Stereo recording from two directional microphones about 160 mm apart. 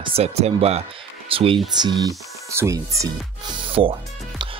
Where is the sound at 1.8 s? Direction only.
25° right (ahead or behind).